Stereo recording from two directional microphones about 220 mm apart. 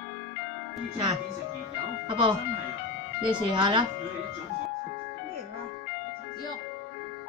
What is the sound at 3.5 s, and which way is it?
Speech, 20° right (ahead or behind).